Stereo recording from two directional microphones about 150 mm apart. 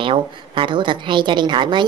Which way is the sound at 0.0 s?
35° right (ahead or behind).